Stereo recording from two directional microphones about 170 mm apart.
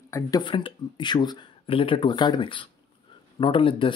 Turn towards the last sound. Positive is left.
turn(degrees=30)  # may be behind; listen again after turning